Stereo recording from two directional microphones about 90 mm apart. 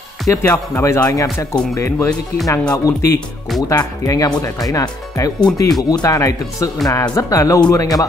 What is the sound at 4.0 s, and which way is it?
Speech, 40° left (ahead or behind).